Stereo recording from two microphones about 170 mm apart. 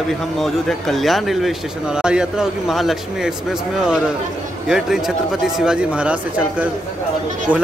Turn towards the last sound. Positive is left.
turn(degrees=-10)  # may be behind; listen again after turning